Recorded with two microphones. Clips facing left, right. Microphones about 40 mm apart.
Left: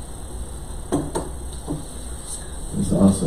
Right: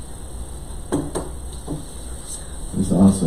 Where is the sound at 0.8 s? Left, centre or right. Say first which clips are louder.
Even; centre.